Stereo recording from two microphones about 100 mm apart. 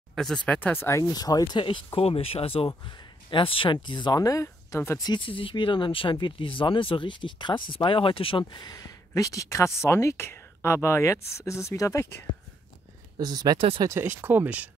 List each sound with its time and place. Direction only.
0.1 s speech: 5° left (ahead or behind); by 1.0 s 25° left (ahead or behind)
1.0 s speech: 40° left (ahead or behind)
2.0 s speech: 75° left (ahead or behind); by 4.9 s 30° left (ahead or behind)
5.0 s speech: 50° left (ahead or behind)
8.6 s speech: 40° left (ahead or behind)
13.2 s speech: 40° right (ahead or behind)
13.6 s speech: 65° right (ahead or behind)
13.8 s speech: 25° right (ahead or behind)